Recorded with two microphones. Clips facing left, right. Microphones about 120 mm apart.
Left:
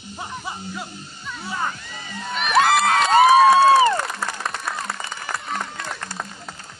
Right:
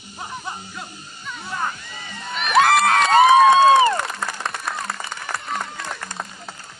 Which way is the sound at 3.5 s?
20° right (ahead or behind).